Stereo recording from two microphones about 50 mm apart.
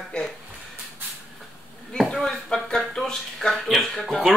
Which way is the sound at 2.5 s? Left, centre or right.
Centre.